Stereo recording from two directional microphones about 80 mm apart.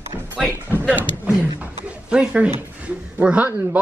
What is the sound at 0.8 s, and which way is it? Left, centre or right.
Speech, centre.